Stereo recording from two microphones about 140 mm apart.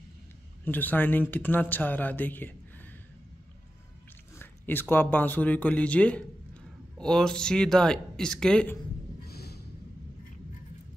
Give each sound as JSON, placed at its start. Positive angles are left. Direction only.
{"t": 0.7, "sound": "speech", "side_deg": 15}
{"t": 4.4, "sound": "speech", "side_deg": 15}
{"t": 9.3, "sound": "a sound", "side_deg": 90}